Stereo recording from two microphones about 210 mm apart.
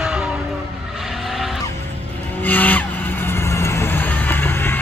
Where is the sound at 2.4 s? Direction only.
10° left (ahead or behind).